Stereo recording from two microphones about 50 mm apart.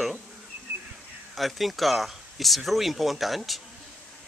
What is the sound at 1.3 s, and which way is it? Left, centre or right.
Speech, centre.